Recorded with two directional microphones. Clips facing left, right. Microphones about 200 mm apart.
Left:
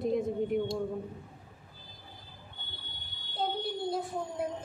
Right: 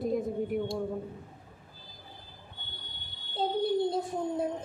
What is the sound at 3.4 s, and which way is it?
Child singing, 25° right (ahead or behind).